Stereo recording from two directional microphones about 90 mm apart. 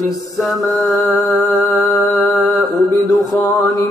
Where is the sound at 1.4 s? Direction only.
45° left (ahead or behind).